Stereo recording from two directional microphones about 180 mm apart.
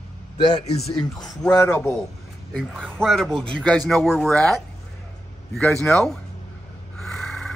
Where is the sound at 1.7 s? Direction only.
5° left (ahead or behind).